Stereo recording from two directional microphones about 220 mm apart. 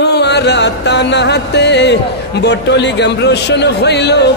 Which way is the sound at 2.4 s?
50° left (ahead or behind).